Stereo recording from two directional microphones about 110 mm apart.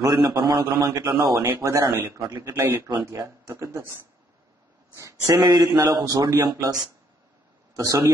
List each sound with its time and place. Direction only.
0.0 s a man's voice: 35° right (ahead or behind)
2.6 s a man's voice: 20° right (ahead or behind)